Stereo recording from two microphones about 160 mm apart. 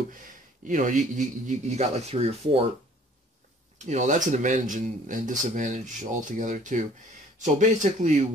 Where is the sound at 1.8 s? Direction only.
40° right (ahead or behind).